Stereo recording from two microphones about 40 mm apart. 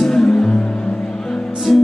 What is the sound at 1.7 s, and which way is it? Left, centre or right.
Music, centre.